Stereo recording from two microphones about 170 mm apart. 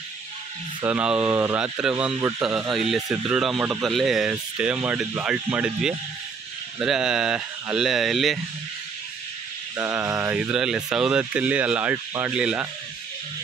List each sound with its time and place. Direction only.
0.8 s speech: 10° right (ahead or behind)
2.1 s speech: 15° right (ahead or behind)
2.4 s speech: 5° right (ahead or behind)
9.8 s speech: 15° right (ahead or behind)